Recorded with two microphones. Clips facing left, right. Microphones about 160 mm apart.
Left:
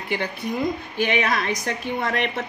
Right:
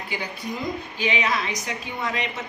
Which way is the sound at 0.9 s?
55° left (ahead or behind).